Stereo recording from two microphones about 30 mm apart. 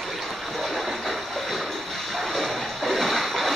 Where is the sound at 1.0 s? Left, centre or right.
Centre.